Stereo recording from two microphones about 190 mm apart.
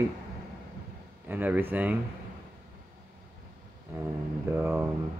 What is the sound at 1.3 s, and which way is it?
Speech, 10° right (ahead or behind).